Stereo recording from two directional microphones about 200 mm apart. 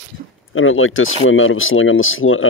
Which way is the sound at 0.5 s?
90° left.